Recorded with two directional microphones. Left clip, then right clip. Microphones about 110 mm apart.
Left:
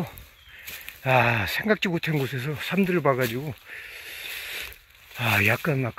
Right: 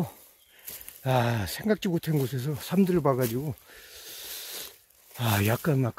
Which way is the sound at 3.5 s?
80° right.